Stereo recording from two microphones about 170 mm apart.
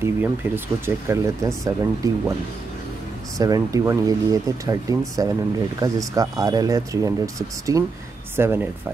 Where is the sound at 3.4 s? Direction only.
20° right (ahead or behind).